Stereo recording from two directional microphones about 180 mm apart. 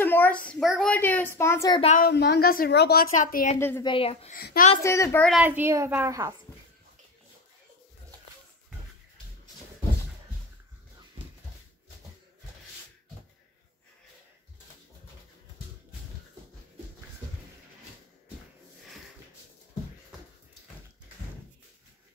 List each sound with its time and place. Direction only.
0.0 s a sound: 10° left (ahead or behind)
2.0 s a woman's voice: 60° left (ahead or behind)
3.5 s a child's voice: 10° left (ahead or behind)
3.8 s a woman's voice: 30° left (ahead or behind)
4.3 s a child's voice: 55° left (ahead or behind)
4.8 s a child's voice: 15° left (ahead or behind)
5.4 s a woman's voice: 10° right (ahead or behind)